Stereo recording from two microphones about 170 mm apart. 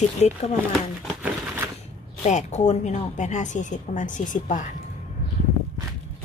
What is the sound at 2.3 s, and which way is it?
Speech, 45° left (ahead or behind).